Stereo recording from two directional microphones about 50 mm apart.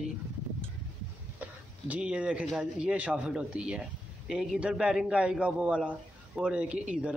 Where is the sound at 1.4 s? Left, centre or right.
Right.